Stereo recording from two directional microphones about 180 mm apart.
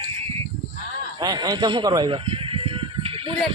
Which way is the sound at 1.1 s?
20° right (ahead or behind).